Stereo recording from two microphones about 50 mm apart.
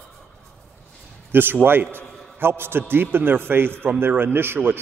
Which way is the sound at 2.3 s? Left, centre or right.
Right.